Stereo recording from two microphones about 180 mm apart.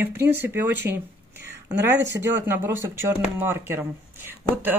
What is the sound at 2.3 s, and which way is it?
Speech, 10° right (ahead or behind).